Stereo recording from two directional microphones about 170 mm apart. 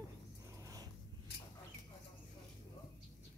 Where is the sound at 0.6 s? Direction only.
20° right (ahead or behind).